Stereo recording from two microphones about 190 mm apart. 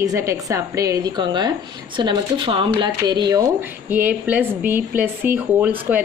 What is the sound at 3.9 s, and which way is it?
A woman's voice, 10° right (ahead or behind).